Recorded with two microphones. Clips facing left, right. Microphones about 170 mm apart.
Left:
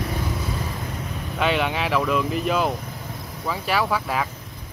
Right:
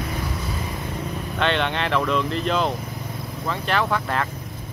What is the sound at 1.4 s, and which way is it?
Speech, 5° left (ahead or behind).